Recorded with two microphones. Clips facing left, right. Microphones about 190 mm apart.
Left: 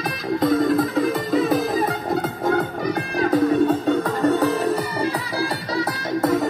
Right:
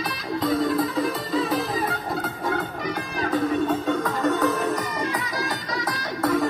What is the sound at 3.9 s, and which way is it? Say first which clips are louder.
Music: left 4 dB; 35° left (ahead or behind).